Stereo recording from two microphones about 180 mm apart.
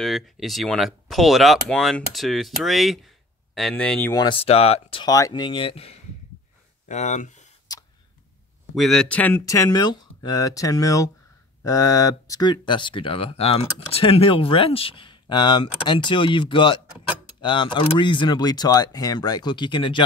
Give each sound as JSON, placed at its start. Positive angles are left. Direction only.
{"t": 0.0, "sound": "speech", "side_deg": 0}
{"t": 4.1, "sound": "speech", "side_deg": 25}
{"t": 5.1, "sound": "speech", "side_deg": 20}
{"t": 7.7, "sound": "a sound", "side_deg": 20}
{"t": 8.7, "sound": "speech", "side_deg": 0}